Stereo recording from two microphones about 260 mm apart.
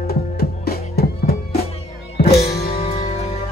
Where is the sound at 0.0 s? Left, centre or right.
Left.